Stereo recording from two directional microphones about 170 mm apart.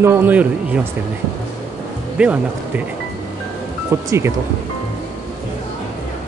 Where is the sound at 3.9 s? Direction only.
15° right (ahead or behind).